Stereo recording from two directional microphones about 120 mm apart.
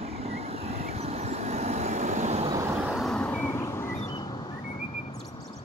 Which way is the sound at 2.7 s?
5° right (ahead or behind).